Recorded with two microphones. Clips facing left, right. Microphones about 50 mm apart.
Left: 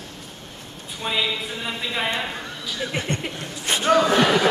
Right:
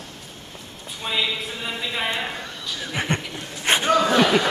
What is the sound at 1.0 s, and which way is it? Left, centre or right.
Speech, centre.